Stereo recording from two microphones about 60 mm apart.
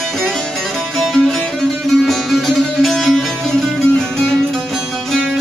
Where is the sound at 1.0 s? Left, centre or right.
Centre.